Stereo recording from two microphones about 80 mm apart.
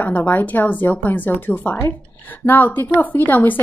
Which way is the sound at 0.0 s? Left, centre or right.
Left.